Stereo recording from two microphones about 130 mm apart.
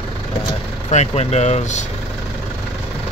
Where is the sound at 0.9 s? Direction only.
60° left (ahead or behind).